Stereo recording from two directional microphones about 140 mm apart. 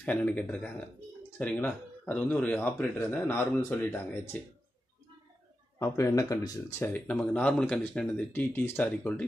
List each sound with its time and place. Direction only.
0.0 s speech: 10° left (ahead or behind)
5.8 s speech: 20° left (ahead or behind)
6.9 s speech: 10° left (ahead or behind)